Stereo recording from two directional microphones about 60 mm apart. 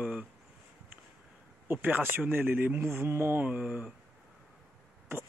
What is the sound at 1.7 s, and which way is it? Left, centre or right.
Speech, right.